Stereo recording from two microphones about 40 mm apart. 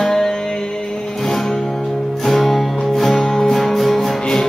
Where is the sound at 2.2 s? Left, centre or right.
Centre.